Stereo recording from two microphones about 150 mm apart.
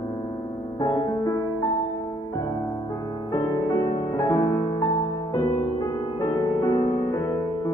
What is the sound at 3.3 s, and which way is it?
Music, 25° left (ahead or behind).